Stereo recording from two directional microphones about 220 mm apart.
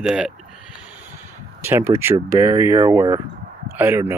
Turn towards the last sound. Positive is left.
turn(degrees=-10)  # may be behind; listen again after turning